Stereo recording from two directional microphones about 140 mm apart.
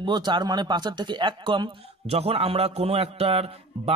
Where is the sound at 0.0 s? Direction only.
35° right (ahead or behind).